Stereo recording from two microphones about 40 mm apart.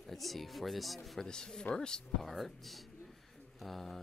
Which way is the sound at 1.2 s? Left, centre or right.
Centre.